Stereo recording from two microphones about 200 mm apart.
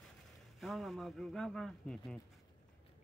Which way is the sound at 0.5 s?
Centre (ahead or behind).